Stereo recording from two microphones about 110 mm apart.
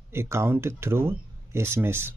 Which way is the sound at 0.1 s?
20° right (ahead or behind).